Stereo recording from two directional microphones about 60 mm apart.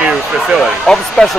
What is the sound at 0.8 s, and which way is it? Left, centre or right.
Speech, centre.